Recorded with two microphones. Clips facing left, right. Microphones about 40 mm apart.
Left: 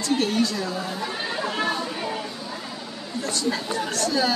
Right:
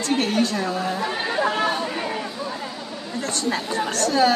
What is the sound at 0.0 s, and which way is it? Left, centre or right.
Speech, right.